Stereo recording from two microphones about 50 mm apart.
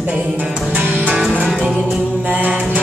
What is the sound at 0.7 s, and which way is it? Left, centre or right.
Music, right.